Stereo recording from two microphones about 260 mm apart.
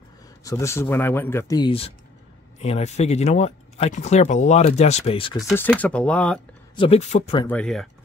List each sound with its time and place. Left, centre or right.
0.4 s speech: centre
5.5 s speech: centre
6.7 s speech: left
7.4 s speech: centre